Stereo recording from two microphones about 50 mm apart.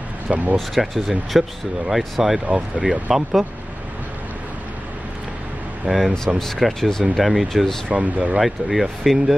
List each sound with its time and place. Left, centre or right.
0.6 s speech: centre
5.9 s speech: centre
6.1 s speech: centre
7.9 s speech: right
8.4 s speech: centre